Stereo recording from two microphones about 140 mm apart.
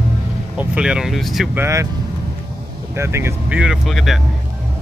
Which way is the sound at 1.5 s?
20° right (ahead or behind).